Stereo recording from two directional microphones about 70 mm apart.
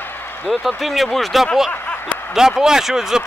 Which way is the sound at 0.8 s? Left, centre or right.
Centre.